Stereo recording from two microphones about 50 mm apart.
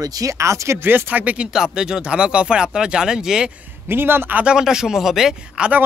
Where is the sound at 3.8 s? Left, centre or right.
Right.